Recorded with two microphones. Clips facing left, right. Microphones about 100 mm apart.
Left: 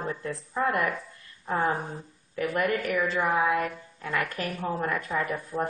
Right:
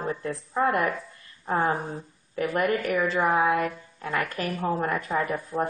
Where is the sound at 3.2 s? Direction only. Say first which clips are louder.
Right 3 dB; 20° right (ahead or behind).